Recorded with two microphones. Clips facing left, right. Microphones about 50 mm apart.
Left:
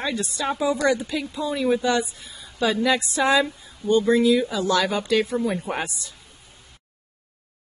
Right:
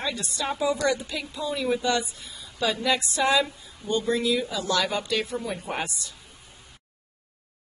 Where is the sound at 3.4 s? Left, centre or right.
Left.